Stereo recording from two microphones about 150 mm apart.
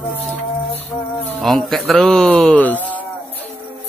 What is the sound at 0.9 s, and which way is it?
Insect, 5° left (ahead or behind).